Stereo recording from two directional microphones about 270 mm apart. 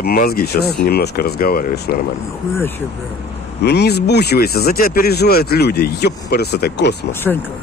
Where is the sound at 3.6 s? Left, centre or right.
Left.